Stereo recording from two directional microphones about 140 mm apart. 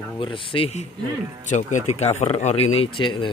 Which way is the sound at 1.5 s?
60° left (ahead or behind).